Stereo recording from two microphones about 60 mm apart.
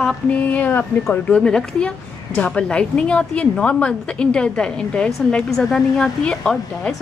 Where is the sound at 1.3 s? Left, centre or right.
Centre.